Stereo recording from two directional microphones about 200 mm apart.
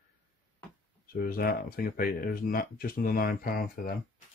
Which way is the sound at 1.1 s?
45° left (ahead or behind).